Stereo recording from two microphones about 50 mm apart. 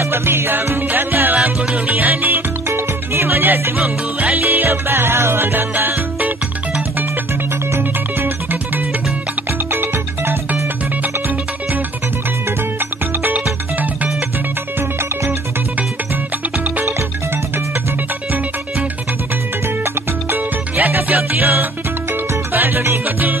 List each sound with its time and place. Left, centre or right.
0.0 s music: right
2.7 s music: right
9.7 s music: right
13.2 s music: right
19.8 s music: right